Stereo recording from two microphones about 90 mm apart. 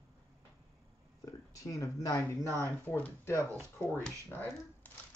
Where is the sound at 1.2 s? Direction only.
40° left (ahead or behind).